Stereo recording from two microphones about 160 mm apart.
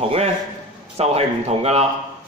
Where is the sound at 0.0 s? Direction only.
35° right (ahead or behind).